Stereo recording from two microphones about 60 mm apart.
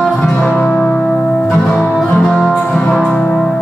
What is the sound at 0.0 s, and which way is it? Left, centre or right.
Music, centre.